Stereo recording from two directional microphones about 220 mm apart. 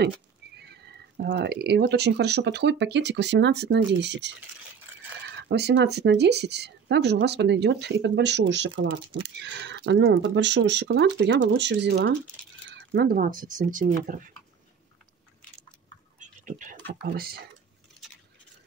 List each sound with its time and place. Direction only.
0.6 s speech: 50° right (ahead or behind)
5.5 s speech: 50° right (ahead or behind)
16.2 s speech: 35° right (ahead or behind)